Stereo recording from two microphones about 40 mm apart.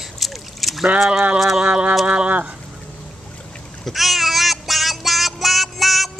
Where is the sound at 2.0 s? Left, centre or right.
Right.